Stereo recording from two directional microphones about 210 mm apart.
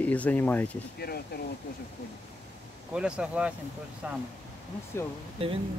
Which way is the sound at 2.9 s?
5° right (ahead or behind).